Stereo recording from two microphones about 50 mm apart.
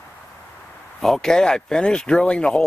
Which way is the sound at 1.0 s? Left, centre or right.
Centre.